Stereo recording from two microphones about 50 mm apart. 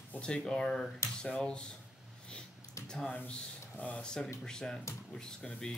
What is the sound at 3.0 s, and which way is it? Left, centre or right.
Speech, left.